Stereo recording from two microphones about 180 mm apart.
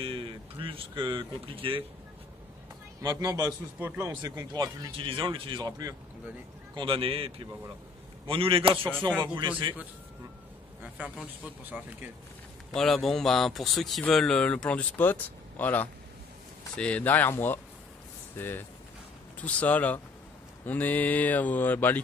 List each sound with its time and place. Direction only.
0.0 s speech: 30° right (ahead or behind)
3.0 s speech: 20° right (ahead or behind)
3.8 s speech: 10° right (ahead or behind)
4.1 s speech: 20° right (ahead or behind)
10.8 s speech: 5° right (ahead or behind)
12.7 s speech: centre (ahead or behind)